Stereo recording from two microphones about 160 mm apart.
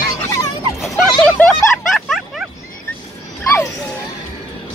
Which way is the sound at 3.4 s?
15° left (ahead or behind).